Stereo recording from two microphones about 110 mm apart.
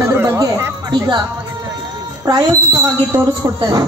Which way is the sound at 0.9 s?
40° right (ahead or behind).